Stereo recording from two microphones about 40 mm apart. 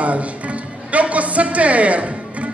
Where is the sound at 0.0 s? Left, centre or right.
Right.